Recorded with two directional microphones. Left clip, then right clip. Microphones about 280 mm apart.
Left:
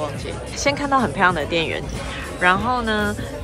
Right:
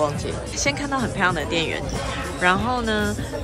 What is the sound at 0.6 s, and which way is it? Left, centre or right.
Speech, centre.